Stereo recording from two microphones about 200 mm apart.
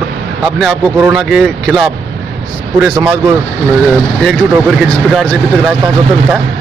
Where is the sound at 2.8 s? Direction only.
10° right (ahead or behind).